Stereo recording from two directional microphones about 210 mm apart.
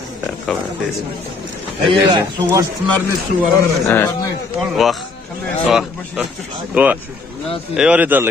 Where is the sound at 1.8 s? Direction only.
25° right (ahead or behind).